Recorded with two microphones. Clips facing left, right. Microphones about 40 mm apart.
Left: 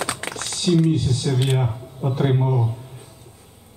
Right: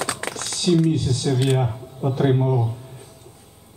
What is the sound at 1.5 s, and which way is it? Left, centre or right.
Speech, centre.